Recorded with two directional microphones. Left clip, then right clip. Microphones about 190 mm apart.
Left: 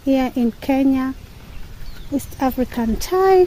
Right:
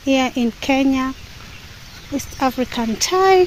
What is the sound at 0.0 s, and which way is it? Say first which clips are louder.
Speech: right 1 dB; 20° left (ahead or behind).